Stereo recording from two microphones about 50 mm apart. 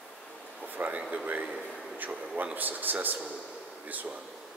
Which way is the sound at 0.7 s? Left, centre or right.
Right.